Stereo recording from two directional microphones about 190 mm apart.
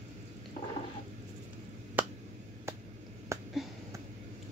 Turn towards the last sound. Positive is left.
turn(degrees=-15)  # may be behind; listen again after turning